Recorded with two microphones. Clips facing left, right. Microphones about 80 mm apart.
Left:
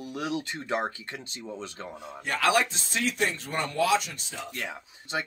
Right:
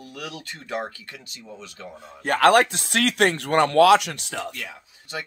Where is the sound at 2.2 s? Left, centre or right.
Right.